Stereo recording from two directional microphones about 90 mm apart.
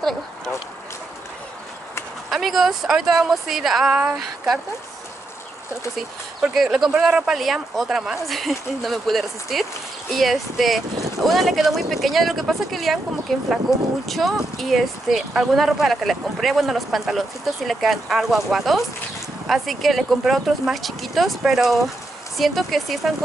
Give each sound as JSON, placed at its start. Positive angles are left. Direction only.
{"t": 2.2, "sound": "speech", "side_deg": 0}
{"t": 5.9, "sound": "speech", "side_deg": -5}